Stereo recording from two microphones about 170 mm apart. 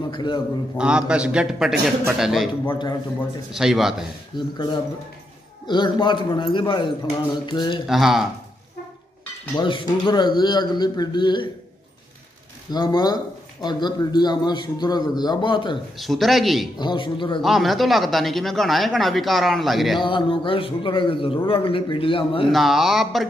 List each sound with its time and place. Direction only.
0.1 s a man's voice: 25° left (ahead or behind)
0.7 s speech: 5° right (ahead or behind)
2.7 s a man's voice: 25° left (ahead or behind)
3.5 s speech: centre (ahead or behind)
4.4 s a man's voice: 25° left (ahead or behind)
7.8 s speech: centre (ahead or behind)
9.6 s a man's voice: 25° left (ahead or behind)
12.7 s a man's voice: 25° left (ahead or behind)
16.0 s speech: centre (ahead or behind)
16.7 s a man's voice: 30° left (ahead or behind)
17.4 s speech: centre (ahead or behind)
20.0 s a man's voice: 30° left (ahead or behind)
22.5 s speech: centre (ahead or behind)